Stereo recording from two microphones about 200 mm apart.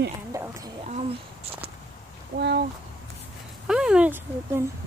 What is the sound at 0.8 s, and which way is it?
Speech, 35° right (ahead or behind).